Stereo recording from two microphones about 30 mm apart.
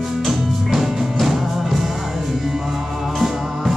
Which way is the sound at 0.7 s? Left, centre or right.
Centre.